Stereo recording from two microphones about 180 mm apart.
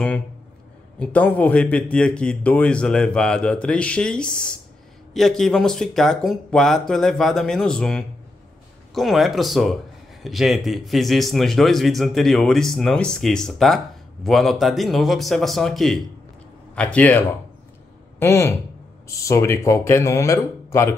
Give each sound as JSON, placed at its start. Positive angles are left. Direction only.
{"t": 0.9, "sound": "speech", "side_deg": 10}
{"t": 18.2, "sound": "speech", "side_deg": 15}